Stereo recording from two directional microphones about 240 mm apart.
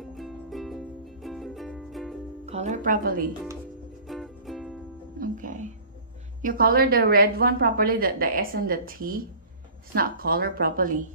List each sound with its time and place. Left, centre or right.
0.0 s music: centre
2.4 s speech: right
4.1 s music: centre
5.2 s music: right
6.4 s a woman's voice: right